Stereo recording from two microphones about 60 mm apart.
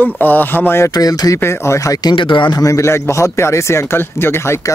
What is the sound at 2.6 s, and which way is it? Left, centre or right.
Speech, left.